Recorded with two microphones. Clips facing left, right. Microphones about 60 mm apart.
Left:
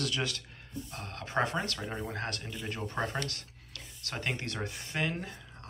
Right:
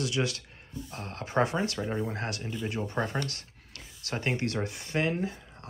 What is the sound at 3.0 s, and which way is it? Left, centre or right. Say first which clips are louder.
Speech: right 1 dB; right.